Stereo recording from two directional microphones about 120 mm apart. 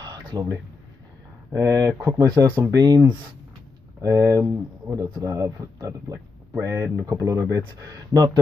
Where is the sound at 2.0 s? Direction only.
30° right (ahead or behind).